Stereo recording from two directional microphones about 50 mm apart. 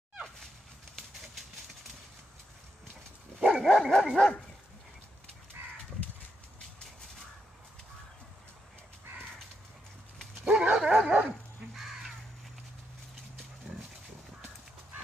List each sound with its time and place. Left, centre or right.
3.3 s dog: centre
3.6 s dog: centre
10.4 s dog: right
11.6 s crow: centre